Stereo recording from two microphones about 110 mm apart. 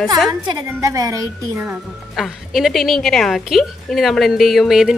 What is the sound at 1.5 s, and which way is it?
Speech, 15° right (ahead or behind).